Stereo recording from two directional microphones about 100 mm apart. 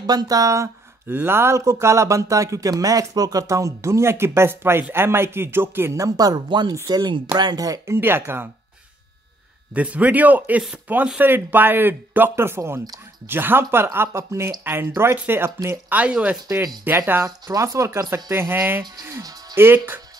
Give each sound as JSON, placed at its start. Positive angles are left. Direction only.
{"t": 0.0, "sound": "speech", "side_deg": -40}
{"t": 9.8, "sound": "a man's voice", "side_deg": -15}